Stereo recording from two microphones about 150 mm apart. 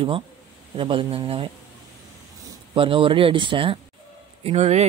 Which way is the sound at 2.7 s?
35° right (ahead or behind).